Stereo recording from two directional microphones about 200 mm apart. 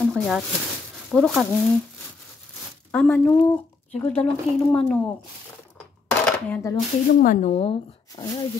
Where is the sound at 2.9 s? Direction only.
5° left (ahead or behind).